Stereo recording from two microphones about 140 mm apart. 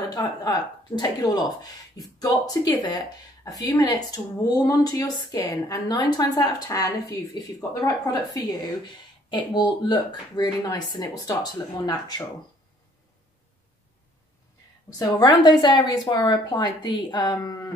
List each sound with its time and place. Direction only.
0.1 s speech: 25° left (ahead or behind)
15.0 s a woman's voice: 30° left (ahead or behind)